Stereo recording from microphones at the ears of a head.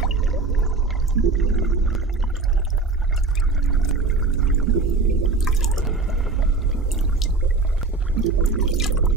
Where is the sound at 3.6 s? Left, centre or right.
Right.